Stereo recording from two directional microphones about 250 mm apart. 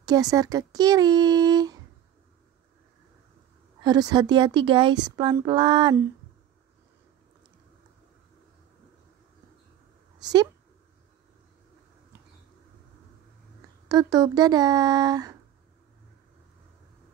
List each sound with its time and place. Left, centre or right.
0.0 s a woman's voice: centre
3.8 s a woman's voice: centre
10.2 s speech: centre
13.8 s a woman's voice: centre